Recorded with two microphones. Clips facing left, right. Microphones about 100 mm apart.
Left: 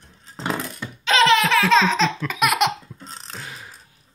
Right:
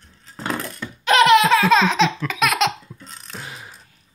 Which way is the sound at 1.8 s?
5° right (ahead or behind).